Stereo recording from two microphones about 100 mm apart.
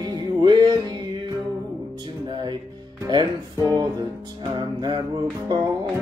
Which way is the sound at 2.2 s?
55° right (ahead or behind).